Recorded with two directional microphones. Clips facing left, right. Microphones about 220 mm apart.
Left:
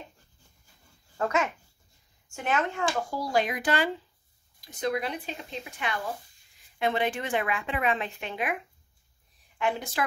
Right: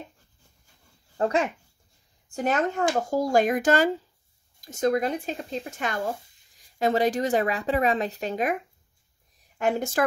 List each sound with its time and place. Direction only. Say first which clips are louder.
1.1 s speech: right 3 dB; 30° right (ahead or behind)
9.6 s speech: right 5 dB; 45° right (ahead or behind)